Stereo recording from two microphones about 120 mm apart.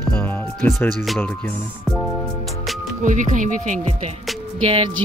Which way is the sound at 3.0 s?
90° right.